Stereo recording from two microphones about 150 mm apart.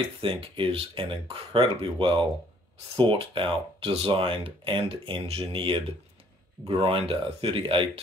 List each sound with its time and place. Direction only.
0.2 s speech: 35° right (ahead or behind)